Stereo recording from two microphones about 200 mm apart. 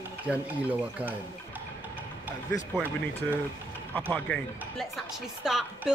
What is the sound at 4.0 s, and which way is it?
Speech, 5° left (ahead or behind).